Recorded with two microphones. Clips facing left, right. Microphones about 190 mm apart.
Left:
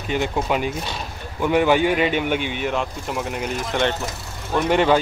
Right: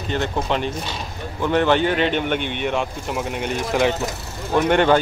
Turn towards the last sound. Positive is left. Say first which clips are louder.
# right 1 dB
turn(degrees=5)  # may be behind; listen again after turning